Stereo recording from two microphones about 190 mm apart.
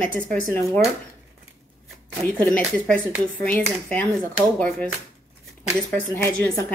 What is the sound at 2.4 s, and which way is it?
Speech, 5° left (ahead or behind).